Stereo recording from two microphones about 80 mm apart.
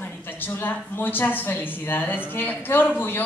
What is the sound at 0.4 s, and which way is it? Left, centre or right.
A woman's voice, left.